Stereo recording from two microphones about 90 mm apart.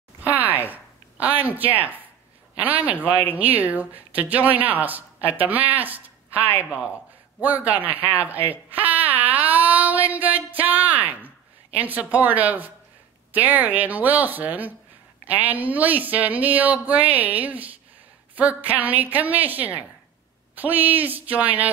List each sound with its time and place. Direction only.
0.2 s a sound: 20° right (ahead or behind)
1.6 s a woman's voice: 20° right (ahead or behind)
8.5 s child singing: 20° right (ahead or behind)
13.3 s a woman's voice: 20° right (ahead or behind)